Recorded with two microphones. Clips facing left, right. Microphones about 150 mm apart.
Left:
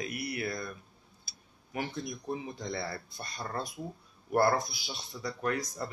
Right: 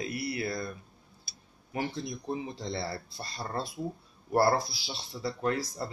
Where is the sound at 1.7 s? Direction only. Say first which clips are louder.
Right 2 dB; 30° right (ahead or behind).